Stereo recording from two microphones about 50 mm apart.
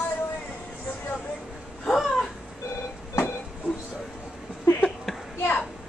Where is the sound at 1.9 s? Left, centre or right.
Centre.